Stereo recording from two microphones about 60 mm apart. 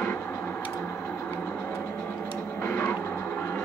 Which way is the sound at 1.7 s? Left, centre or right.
Left.